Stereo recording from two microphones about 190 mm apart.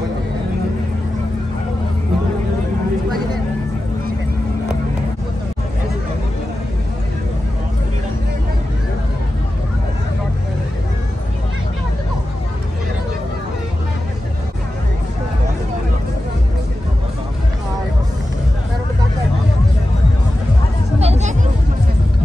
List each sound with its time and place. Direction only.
21.0 s children playing: 35° right (ahead or behind)